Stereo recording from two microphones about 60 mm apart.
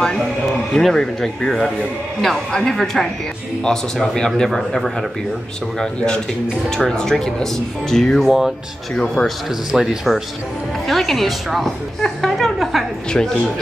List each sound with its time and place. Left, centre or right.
0.7 s speech: centre
5.9 s speech: centre
9.7 s a woman's voice: centre
13.1 s speech: centre